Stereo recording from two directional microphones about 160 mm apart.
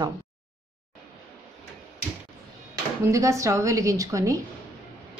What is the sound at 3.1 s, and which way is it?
Speech, 20° right (ahead or behind).